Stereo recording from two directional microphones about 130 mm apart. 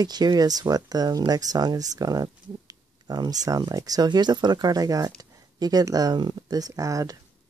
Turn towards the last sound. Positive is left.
turn(degrees=-25)  # may be behind; listen again after turning